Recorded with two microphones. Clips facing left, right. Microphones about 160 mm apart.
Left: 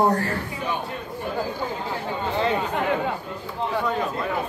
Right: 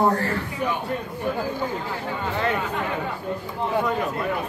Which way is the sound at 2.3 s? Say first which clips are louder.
Left 2 dB; 25° left (ahead or behind).